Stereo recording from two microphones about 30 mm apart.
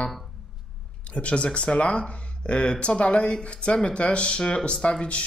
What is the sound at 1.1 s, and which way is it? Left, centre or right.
Speech, left.